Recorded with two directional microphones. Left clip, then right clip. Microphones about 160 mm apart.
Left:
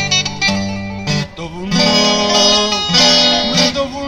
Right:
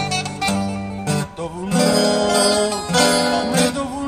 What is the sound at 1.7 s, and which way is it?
Music, 10° left (ahead or behind).